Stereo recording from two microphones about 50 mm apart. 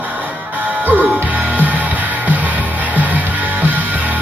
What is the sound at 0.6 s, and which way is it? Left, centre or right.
Music, right.